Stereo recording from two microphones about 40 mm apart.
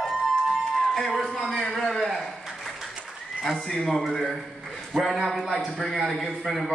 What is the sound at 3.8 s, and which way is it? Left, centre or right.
A man's voice, centre.